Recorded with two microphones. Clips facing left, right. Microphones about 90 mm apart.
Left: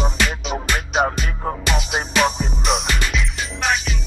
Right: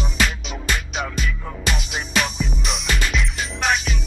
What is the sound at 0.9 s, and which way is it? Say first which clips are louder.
Music: left 7 dB; 45° left (ahead or behind).